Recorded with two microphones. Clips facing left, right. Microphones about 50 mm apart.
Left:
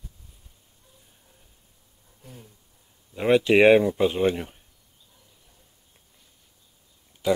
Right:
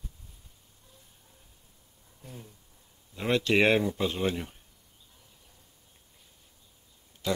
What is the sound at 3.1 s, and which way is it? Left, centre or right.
Speech, centre.